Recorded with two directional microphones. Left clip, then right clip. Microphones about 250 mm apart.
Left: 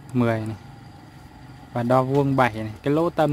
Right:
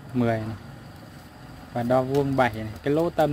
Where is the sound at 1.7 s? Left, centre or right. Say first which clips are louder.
Left 2 dB; centre.